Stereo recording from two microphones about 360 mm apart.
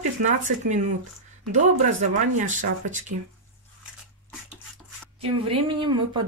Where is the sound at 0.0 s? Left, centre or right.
Right.